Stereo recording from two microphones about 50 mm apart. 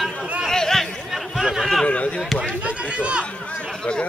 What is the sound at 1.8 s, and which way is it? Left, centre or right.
Speech, left.